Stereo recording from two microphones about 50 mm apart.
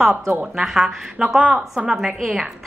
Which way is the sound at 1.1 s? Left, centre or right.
Centre.